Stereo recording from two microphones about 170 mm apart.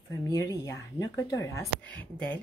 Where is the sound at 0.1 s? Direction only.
20° left (ahead or behind).